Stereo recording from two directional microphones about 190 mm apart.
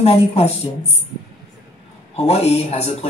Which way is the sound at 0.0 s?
35° left (ahead or behind).